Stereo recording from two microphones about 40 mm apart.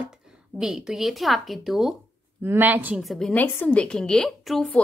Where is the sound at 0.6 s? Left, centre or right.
Centre.